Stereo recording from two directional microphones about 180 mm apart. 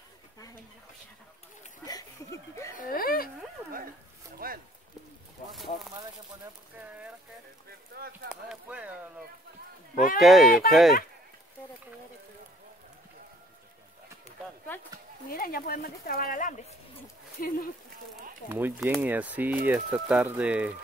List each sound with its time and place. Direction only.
1.9 s chuckle: 20° left (ahead or behind)
2.7 s speech: 50° left (ahead or behind)
4.4 s speech: 55° right (ahead or behind)
5.5 s speech: centre (ahead or behind)
7.9 s speech: 60° right (ahead or behind)
8.3 s speech: 5° right (ahead or behind)
10.1 s speech: centre (ahead or behind)
15.2 s speech: 55° left (ahead or behind)
18.5 s speech: 5° right (ahead or behind)